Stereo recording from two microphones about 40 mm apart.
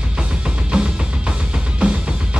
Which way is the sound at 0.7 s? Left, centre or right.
Right.